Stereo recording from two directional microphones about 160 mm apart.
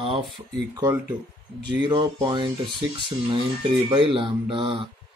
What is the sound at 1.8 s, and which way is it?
Speech, 30° right (ahead or behind).